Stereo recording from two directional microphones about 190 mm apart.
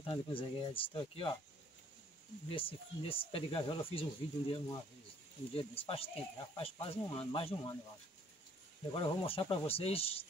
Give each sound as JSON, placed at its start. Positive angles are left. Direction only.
{"t": 0.0, "sound": "speech", "side_deg": 25}
{"t": 2.5, "sound": "speech", "side_deg": 30}
{"t": 8.9, "sound": "speech", "side_deg": 25}